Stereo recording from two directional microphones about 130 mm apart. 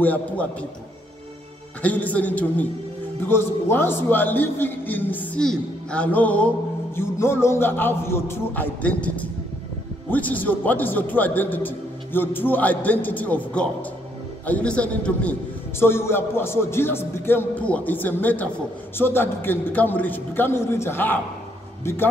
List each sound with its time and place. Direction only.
0.0 s speech: 10° left (ahead or behind)
1.8 s a man's voice: 10° left (ahead or behind)